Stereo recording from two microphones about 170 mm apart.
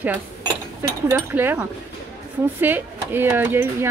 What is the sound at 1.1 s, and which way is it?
Speech, 10° right (ahead or behind).